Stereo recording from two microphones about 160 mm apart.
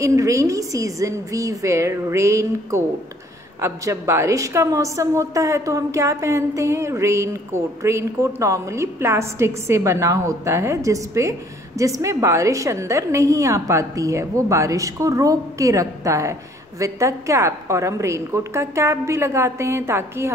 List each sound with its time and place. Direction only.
0.0 s a woman's voice: 20° right (ahead or behind)